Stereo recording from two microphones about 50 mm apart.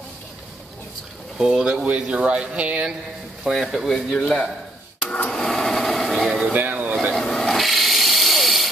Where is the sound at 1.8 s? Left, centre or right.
Right.